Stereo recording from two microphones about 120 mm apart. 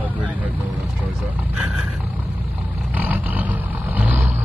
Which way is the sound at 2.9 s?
15° right (ahead or behind).